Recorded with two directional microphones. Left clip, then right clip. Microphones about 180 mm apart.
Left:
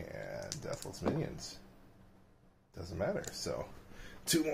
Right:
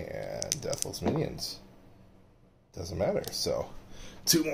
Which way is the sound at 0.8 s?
10° right (ahead or behind).